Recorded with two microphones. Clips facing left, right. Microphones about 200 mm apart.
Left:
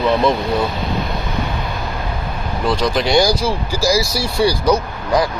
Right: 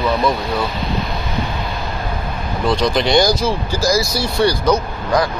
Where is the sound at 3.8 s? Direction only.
30° left (ahead or behind).